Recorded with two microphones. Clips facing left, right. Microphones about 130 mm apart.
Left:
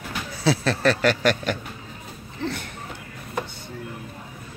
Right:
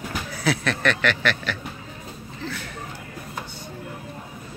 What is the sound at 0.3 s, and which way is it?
Speech, 30° left (ahead or behind).